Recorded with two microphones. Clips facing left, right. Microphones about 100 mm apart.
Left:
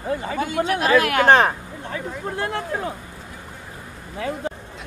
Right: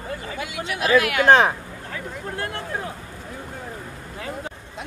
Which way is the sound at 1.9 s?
25° left (ahead or behind).